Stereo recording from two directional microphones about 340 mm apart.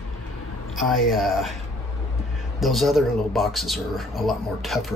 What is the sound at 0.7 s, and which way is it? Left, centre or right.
Speech, centre.